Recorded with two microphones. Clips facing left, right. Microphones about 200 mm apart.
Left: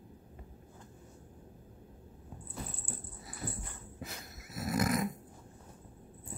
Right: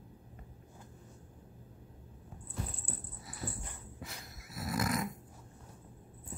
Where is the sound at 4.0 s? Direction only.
25° left (ahead or behind).